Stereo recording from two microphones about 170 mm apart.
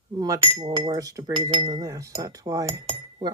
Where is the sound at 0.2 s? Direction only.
25° right (ahead or behind).